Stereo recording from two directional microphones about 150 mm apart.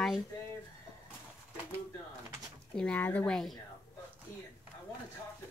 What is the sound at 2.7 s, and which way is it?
Speech, 5° left (ahead or behind).